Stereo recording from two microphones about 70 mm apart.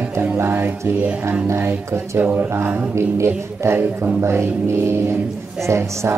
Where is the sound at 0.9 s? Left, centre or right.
Centre.